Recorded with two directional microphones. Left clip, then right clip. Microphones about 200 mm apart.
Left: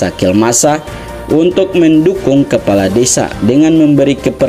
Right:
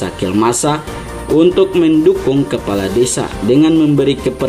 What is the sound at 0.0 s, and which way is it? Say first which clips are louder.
Speech: left 4 dB; 25° left (ahead or behind).